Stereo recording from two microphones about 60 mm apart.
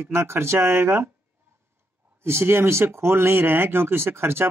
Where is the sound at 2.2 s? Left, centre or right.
Right.